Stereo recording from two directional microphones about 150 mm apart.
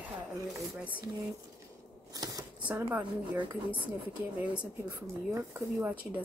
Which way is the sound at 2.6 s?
10° right (ahead or behind).